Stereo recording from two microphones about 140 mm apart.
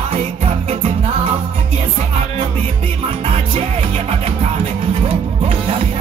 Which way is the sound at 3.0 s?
45° right (ahead or behind).